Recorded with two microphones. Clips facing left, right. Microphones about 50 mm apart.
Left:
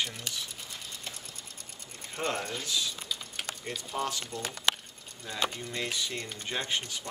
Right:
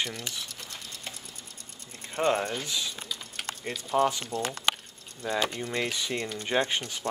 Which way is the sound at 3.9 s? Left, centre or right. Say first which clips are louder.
Right 9 dB; right.